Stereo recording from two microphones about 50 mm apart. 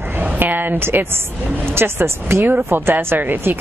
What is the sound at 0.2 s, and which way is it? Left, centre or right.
A woman's voice, right.